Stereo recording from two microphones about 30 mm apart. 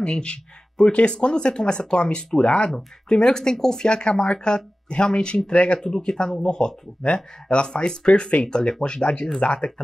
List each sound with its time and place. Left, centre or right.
0.0 s speech: left
0.8 s speech: centre
1.1 s speech: left
3.1 s speech: left
5.8 s speech: centre; by 9.7 s left